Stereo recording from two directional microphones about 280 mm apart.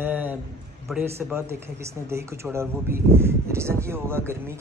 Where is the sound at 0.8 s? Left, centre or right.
Centre.